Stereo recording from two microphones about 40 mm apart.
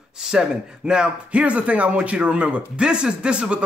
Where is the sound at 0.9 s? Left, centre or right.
Right.